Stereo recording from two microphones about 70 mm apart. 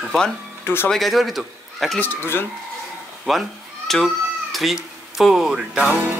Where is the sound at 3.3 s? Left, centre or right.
Centre.